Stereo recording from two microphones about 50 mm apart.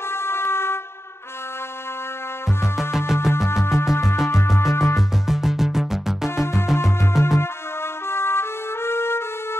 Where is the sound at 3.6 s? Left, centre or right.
Left.